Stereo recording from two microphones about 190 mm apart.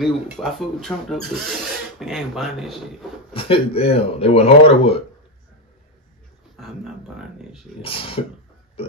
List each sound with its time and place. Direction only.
0.0 s speech: centre (ahead or behind)
3.3 s speech: 30° left (ahead or behind)
6.5 s a sound: centre (ahead or behind)
7.8 s speech: 30° left (ahead or behind)